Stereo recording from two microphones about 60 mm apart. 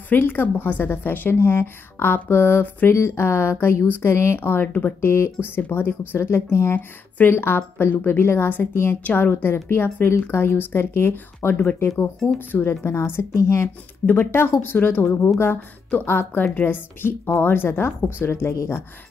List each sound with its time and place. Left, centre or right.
0.1 s a woman's voice: left
2.9 s speech: left
4.5 s a woman's voice: left
14.0 s a woman's voice: left